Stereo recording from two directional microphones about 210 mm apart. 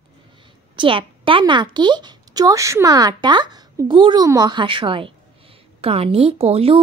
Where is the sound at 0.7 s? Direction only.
25° right (ahead or behind).